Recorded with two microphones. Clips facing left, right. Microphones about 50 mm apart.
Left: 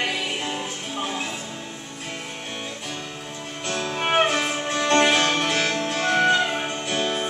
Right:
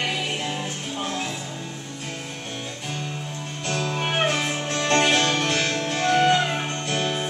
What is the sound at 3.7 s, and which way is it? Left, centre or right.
Music, left.